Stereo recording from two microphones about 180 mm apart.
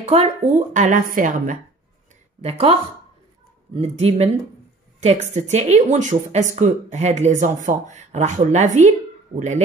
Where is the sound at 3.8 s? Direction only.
35° right (ahead or behind).